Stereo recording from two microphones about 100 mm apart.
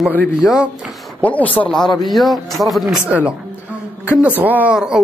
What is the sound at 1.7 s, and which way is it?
Speech, 5° left (ahead or behind).